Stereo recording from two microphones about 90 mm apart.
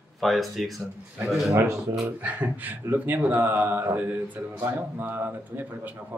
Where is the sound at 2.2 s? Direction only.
15° right (ahead or behind).